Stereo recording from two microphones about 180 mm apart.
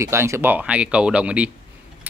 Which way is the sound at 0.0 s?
15° right (ahead or behind).